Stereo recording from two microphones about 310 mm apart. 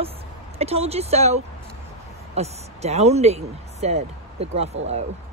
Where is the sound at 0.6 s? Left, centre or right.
Centre.